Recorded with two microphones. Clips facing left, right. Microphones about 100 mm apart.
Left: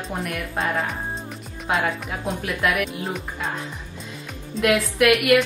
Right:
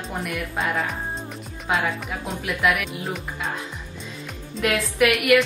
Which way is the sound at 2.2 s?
Centre (ahead or behind).